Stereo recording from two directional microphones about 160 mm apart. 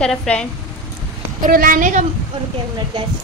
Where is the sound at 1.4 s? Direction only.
60° right (ahead or behind).